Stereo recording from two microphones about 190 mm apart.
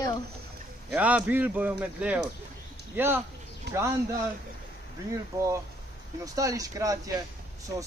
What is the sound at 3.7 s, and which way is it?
Speech, 65° right (ahead or behind).